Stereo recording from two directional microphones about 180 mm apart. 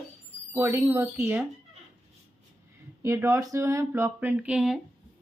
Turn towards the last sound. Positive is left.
turn(degrees=-5)  # may be behind; listen again after turning